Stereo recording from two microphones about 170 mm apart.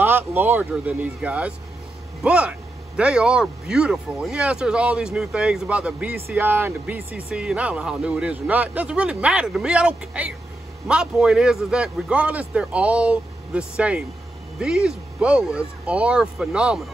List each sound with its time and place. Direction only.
0.0 s speech: 10° right (ahead or behind)